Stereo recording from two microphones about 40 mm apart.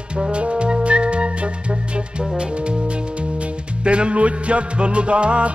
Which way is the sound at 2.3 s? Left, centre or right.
Right.